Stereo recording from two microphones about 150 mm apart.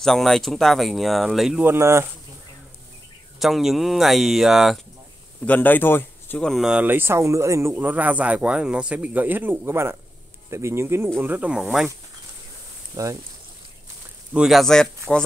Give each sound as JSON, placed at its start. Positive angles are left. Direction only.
{"t": 0.0, "sound": "speech", "side_deg": 0}
{"t": 1.6, "sound": "speech", "side_deg": -15}
{"t": 3.3, "sound": "speech", "side_deg": 0}
{"t": 5.4, "sound": "speech", "side_deg": 10}
{"t": 6.4, "sound": "speech", "side_deg": 0}
{"t": 12.9, "sound": "speech", "side_deg": -25}
{"t": 14.3, "sound": "speech", "side_deg": 0}